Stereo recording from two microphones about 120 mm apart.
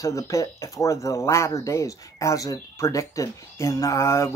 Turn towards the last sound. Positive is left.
turn(degrees=25)  # may be behind; listen again after turning